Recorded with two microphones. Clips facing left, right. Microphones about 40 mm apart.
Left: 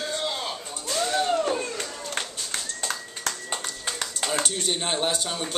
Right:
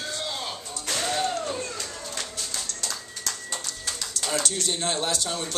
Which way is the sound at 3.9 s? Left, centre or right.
Left.